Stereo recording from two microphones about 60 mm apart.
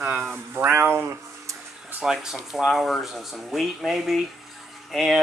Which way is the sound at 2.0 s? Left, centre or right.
Centre.